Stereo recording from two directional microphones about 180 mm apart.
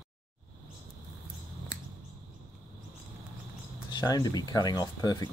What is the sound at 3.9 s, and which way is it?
Speech, 20° left (ahead or behind).